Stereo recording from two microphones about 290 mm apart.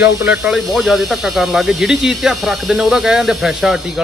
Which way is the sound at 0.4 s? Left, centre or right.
Centre.